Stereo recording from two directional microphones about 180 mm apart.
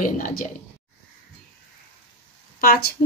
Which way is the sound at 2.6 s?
55° left (ahead or behind).